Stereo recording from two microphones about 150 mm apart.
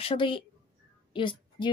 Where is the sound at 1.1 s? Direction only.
35° left (ahead or behind).